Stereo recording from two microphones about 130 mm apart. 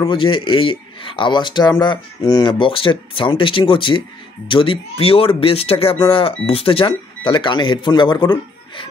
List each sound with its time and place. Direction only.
0.1 s speech: 40° left (ahead or behind)